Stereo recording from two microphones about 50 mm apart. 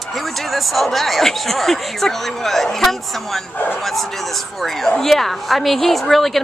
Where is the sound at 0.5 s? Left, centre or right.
Centre.